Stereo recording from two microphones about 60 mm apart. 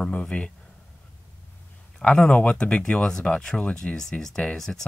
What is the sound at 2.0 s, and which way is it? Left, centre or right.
Speech, centre.